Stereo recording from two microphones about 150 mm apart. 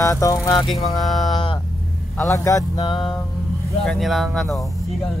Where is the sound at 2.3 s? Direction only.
20° left (ahead or behind).